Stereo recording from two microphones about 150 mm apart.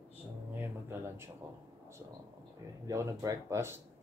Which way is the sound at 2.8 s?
20° right (ahead or behind).